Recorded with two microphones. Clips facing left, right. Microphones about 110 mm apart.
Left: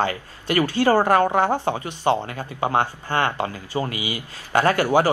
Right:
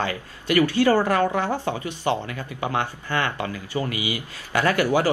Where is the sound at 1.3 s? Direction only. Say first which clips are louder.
Left 4 dB; 55° left (ahead or behind).